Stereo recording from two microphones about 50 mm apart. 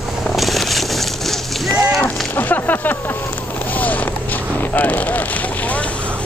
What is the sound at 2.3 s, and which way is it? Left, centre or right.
Boat, left.